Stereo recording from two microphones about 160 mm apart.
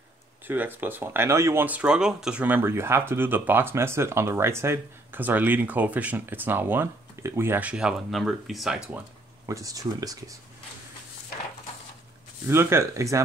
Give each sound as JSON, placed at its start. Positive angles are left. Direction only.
{"t": 0.5, "sound": "speech", "side_deg": -10}
{"t": 9.5, "sound": "speech", "side_deg": -20}
{"t": 12.4, "sound": "speech", "side_deg": -15}